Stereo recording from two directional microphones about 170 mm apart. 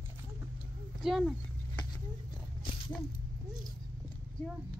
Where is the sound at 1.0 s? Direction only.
5° right (ahead or behind).